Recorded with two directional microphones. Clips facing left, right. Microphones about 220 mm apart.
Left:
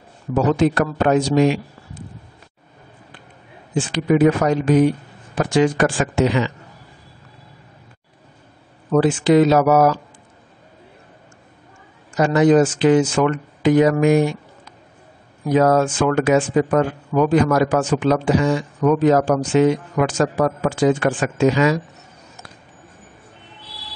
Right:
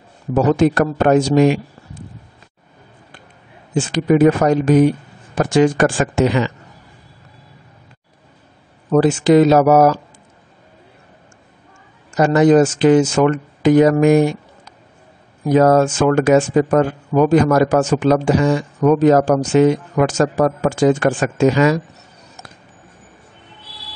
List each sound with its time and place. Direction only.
0.5 s speech: 45° right (ahead or behind)
3.7 s speech: 45° right (ahead or behind)
8.9 s speech: 40° right (ahead or behind)
12.1 s speech: 45° right (ahead or behind)